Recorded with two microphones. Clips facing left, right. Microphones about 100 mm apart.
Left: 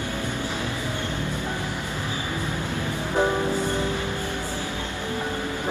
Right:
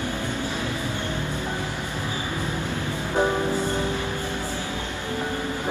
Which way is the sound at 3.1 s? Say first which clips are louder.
Even; 15° left (ahead or behind).